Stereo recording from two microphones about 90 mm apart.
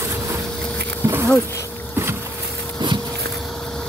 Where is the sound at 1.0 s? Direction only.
30° right (ahead or behind).